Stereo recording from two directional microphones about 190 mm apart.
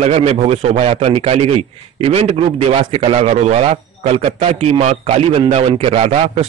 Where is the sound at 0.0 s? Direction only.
35° right (ahead or behind).